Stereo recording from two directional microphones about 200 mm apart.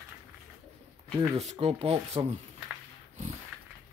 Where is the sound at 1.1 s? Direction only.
30° right (ahead or behind).